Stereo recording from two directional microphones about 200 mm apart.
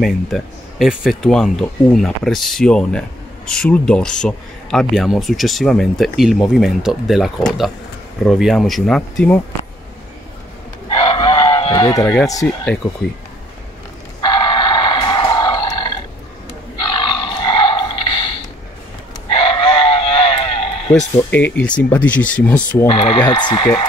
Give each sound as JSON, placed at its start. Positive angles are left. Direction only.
{"t": 0.0, "sound": "speech", "side_deg": 0}
{"t": 10.9, "sound": "chicken", "side_deg": 25}
{"t": 14.2, "sound": "a sound", "side_deg": 25}
{"t": 21.3, "sound": "speech", "side_deg": 10}
{"t": 22.8, "sound": "speech", "side_deg": 30}